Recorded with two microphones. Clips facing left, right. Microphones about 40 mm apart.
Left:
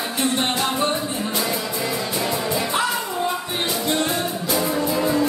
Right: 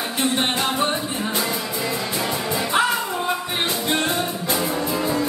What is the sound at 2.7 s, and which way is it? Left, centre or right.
Music, right.